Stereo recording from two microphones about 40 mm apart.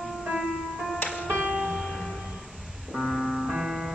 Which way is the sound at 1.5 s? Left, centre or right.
Centre.